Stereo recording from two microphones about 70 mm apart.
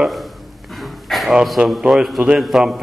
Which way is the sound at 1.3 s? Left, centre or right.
Centre.